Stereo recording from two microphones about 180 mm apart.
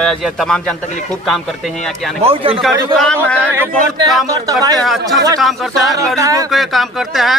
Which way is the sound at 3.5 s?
15° right (ahead or behind).